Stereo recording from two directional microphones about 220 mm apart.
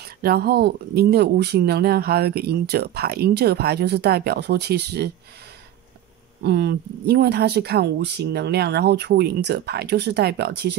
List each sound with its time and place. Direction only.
0.0 s speech: 45° right (ahead or behind)
6.4 s speech: 50° right (ahead or behind)